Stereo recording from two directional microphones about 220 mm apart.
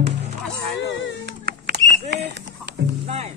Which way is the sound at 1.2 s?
50° right (ahead or behind).